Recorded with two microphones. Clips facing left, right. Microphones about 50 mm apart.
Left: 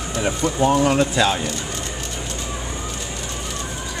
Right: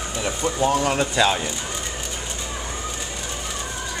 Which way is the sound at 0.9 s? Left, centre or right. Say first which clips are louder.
Left 2 dB; centre.